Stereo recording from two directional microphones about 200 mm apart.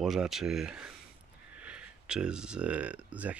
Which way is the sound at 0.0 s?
Centre (ahead or behind).